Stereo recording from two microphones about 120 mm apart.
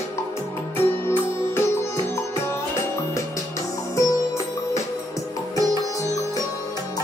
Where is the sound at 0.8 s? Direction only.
20° left (ahead or behind).